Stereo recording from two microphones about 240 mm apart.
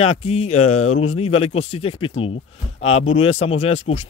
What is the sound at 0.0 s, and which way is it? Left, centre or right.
Speech, left.